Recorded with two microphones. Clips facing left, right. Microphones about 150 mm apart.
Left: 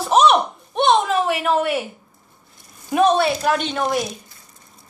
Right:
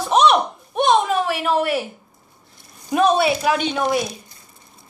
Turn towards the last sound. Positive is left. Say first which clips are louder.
# right 1 dB
turn(degrees=-5)  # may be behind; listen again after turning